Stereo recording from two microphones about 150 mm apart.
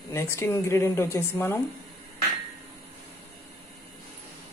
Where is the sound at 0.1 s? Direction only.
15° left (ahead or behind).